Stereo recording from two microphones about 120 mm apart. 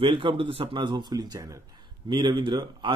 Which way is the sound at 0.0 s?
45° right (ahead or behind).